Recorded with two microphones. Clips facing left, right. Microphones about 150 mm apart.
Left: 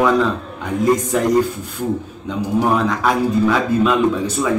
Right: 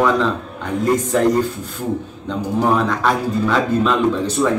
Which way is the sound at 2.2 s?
10° left (ahead or behind).